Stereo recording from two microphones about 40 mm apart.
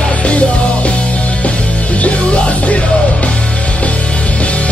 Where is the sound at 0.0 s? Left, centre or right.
Left.